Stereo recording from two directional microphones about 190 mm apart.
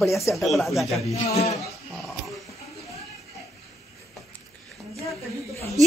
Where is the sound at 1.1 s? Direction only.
35° left (ahead or behind).